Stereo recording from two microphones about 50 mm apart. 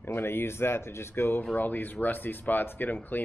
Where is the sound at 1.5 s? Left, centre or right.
Left.